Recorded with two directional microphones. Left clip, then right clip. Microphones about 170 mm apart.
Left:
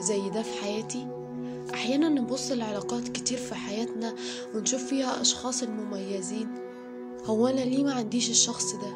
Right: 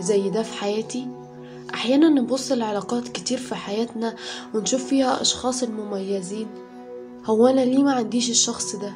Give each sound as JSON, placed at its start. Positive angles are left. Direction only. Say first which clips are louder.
{"t": 0.0, "sound": "a woman's voice", "louder": "right 8 dB", "side_deg": 15}